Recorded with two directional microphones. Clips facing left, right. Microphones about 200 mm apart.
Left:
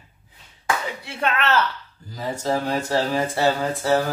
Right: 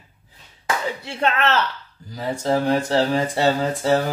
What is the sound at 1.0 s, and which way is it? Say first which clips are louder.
Speech: right 3 dB; 25° right (ahead or behind).